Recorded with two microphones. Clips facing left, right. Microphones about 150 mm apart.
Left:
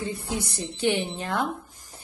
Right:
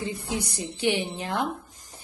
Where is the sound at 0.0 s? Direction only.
15° right (ahead or behind).